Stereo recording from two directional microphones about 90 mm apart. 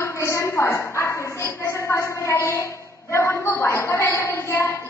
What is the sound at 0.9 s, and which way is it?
A woman's voice, 30° left (ahead or behind).